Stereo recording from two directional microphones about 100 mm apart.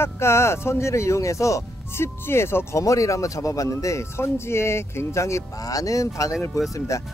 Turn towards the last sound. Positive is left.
turn(degrees=30)  # may be behind; listen again after turning